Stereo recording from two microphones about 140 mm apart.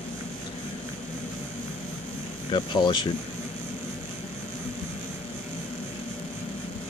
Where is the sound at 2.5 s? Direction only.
35° left (ahead or behind).